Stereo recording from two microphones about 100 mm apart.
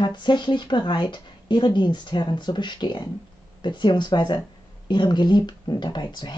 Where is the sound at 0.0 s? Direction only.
50° left (ahead or behind).